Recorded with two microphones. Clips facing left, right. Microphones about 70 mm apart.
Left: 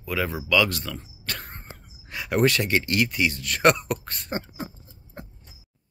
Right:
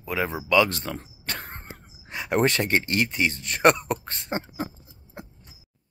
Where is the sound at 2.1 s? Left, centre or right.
Right.